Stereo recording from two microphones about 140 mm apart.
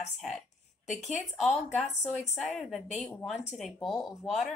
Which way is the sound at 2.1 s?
Centre (ahead or behind).